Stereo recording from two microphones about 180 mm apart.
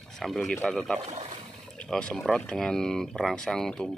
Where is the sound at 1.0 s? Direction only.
40° right (ahead or behind).